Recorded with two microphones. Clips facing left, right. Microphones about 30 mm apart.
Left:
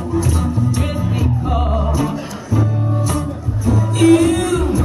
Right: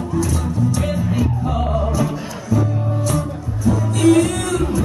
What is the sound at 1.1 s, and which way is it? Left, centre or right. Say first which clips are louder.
Music: left 1 dB; centre.